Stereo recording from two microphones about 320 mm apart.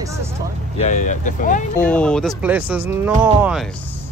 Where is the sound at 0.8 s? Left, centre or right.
Left.